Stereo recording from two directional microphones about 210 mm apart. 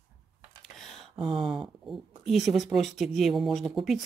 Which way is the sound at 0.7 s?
Centre (ahead or behind).